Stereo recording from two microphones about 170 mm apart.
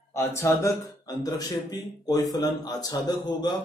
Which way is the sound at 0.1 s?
15° left (ahead or behind).